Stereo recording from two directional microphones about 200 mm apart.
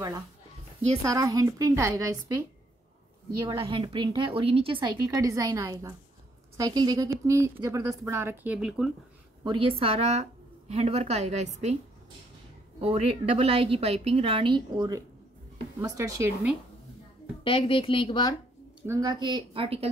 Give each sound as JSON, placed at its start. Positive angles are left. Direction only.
{"t": 1.0, "sound": "a woman's voice", "side_deg": -15}
{"t": 3.4, "sound": "a woman's voice", "side_deg": -25}
{"t": 9.4, "sound": "a woman's voice", "side_deg": -25}
{"t": 12.8, "sound": "a woman's voice", "side_deg": -30}
{"t": 17.4, "sound": "a woman's voice", "side_deg": 25}
{"t": 18.8, "sound": "a woman's voice", "side_deg": -15}